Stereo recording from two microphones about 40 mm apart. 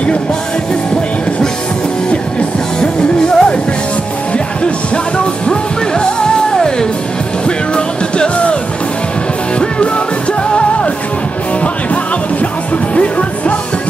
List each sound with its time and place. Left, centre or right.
2.8 s music: left
6.5 s music: centre
7.4 s music: left
9.6 s music: left
11.6 s music: left